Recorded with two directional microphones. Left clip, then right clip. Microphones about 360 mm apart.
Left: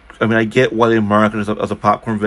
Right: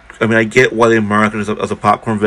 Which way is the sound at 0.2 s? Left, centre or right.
Centre.